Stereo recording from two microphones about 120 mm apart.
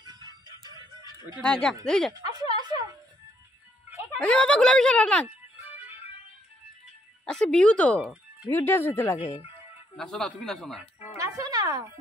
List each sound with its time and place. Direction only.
0.0 s music: 35° right (ahead or behind)
1.4 s speech: 5° left (ahead or behind)
2.2 s a sound: 35° right (ahead or behind)
4.2 s speech: 10° left (ahead or behind)
5.7 s music: 15° right (ahead or behind)
7.2 s speech: 5° left (ahead or behind)
8.0 s music: 10° right (ahead or behind)
8.5 s speech: 20° left (ahead or behind)
9.2 s speech: 45° left (ahead or behind)
9.9 s speech: 5° left (ahead or behind)
11.1 s music: 25° right (ahead or behind)